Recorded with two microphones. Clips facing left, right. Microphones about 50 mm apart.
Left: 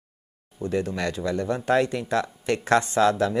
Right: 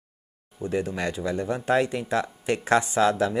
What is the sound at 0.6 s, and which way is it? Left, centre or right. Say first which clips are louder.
Speech: left 1 dB; centre.